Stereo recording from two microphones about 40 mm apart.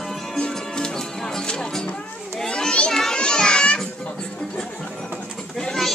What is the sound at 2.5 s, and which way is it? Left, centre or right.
Children playing, left.